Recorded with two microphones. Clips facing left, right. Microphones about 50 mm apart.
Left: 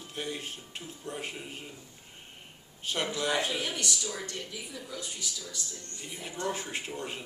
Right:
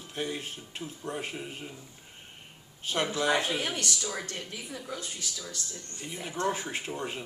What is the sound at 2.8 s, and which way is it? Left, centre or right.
Speech, centre.